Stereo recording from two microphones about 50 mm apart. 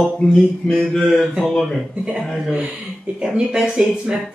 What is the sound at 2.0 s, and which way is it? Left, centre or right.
Speech, centre.